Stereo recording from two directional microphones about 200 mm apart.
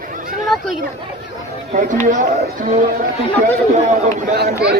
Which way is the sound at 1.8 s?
40° right (ahead or behind).